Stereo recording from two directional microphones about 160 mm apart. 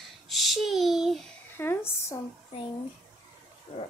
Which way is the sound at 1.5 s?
15° left (ahead or behind).